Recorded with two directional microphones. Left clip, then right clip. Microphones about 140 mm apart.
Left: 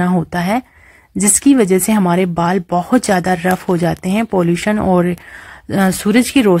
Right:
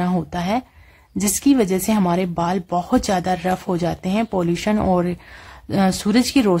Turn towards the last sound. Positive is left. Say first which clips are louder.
# left 5 dB
turn(degrees=20)  # may be behind; listen again after turning